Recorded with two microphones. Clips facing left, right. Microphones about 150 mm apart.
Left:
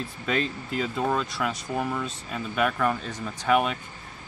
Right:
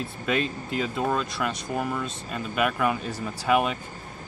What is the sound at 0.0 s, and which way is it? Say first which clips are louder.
Speech: right 1 dB; 5° right (ahead or behind).